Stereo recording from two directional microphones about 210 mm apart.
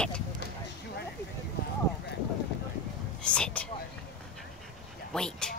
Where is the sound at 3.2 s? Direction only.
5° left (ahead or behind).